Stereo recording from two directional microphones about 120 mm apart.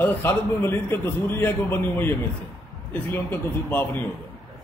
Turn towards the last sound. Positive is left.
turn(degrees=15)  # may be behind; listen again after turning